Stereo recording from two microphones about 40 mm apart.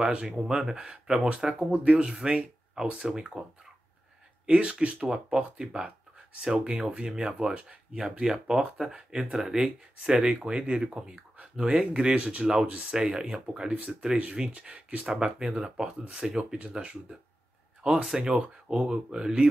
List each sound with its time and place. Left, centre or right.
0.1 s speech: centre
4.5 s speech: right
5.0 s speech: centre
8.2 s speech: centre
9.6 s speech: centre
15.1 s speech: centre